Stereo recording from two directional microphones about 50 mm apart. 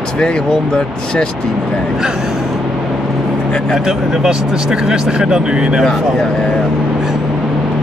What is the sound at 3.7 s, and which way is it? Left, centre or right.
Speech, centre.